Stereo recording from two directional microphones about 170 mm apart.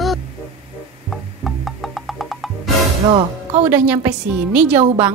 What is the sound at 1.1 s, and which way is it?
Music, centre (ahead or behind).